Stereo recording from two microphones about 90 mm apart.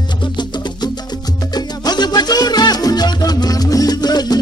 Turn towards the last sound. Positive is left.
turn(degrees=50)  # may be behind; listen again after turning